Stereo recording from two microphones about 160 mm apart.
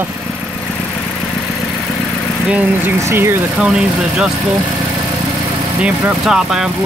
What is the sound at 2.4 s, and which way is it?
Speech, 10° right (ahead or behind).